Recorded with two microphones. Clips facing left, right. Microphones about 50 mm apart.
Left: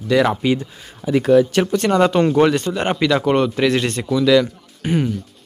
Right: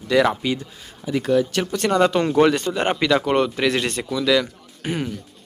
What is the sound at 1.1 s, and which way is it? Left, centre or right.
Speech, left.